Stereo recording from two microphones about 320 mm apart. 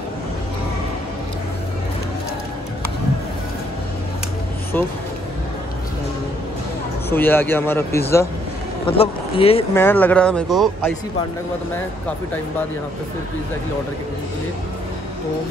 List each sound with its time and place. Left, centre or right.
4.7 s speech: centre
7.1 s speech: centre
8.8 s speech: centre
9.8 s speech: centre